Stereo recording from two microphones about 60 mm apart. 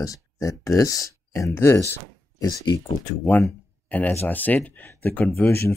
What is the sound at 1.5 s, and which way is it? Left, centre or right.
Speech, left.